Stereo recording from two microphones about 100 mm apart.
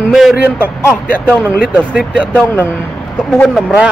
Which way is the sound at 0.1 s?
5° right (ahead or behind).